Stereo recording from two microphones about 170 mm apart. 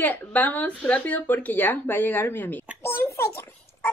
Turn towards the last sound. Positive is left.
turn(degrees=15)  # may be behind; listen again after turning